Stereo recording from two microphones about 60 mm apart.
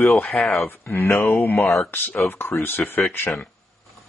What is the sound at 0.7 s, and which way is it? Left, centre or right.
Speech, left.